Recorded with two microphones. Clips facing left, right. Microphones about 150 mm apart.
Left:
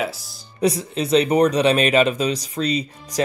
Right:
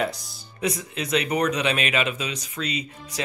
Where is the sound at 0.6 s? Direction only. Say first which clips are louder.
Left 7 dB; 30° left (ahead or behind).